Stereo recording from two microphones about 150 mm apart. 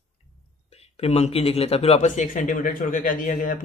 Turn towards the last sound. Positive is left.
turn(degrees=65)  # may be behind; listen again after turning